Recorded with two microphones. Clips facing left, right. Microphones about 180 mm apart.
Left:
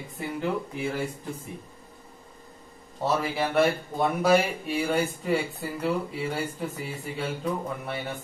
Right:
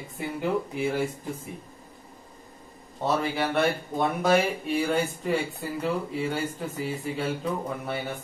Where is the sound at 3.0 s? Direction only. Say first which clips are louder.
Even; centre (ahead or behind).